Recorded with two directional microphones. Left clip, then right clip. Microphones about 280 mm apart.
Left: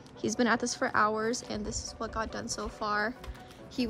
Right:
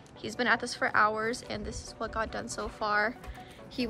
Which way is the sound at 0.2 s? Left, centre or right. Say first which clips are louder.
Even; left.